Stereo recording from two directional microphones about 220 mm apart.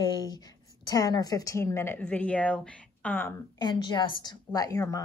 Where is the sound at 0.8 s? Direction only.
15° left (ahead or behind).